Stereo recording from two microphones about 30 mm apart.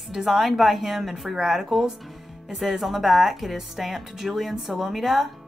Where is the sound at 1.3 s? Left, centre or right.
Centre.